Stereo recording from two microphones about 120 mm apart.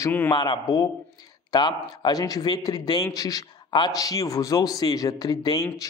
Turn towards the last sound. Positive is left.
turn(degrees=30)  # may be behind; listen again after turning